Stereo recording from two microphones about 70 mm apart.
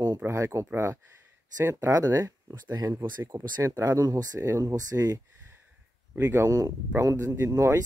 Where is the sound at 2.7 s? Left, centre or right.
Right.